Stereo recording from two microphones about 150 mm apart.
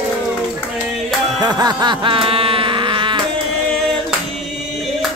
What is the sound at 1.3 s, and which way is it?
Music, 25° right (ahead or behind).